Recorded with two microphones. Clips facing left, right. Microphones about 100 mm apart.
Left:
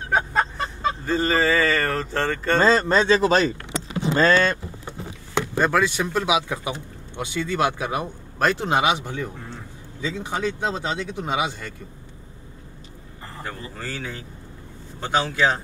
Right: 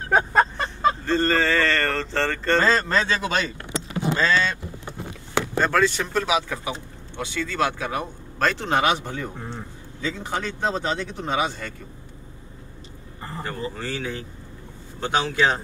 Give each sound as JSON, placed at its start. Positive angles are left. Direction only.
{"t": 0.1, "sound": "a sound", "side_deg": -45}
{"t": 1.0, "sound": "speech", "side_deg": 5}
{"t": 2.6, "sound": "speech", "side_deg": 25}
{"t": 4.2, "sound": "speech", "side_deg": 50}
{"t": 5.3, "sound": "a man's voice", "side_deg": 10}
{"t": 13.4, "sound": "speech", "side_deg": 0}